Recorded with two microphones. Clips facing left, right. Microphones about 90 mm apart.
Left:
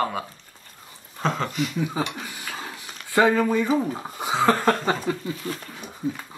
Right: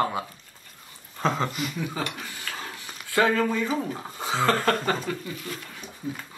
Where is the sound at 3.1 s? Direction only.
20° left (ahead or behind).